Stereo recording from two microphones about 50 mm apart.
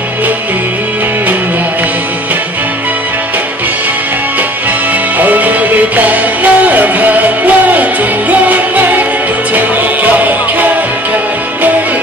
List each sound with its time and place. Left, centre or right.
5.2 s music: right